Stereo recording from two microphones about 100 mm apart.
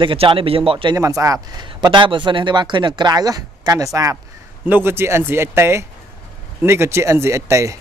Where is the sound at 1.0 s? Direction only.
35° right (ahead or behind).